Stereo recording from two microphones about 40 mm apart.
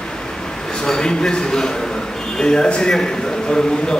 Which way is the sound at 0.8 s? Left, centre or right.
Centre.